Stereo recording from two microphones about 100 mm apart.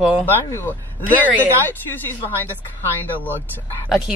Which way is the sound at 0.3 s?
25° left (ahead or behind).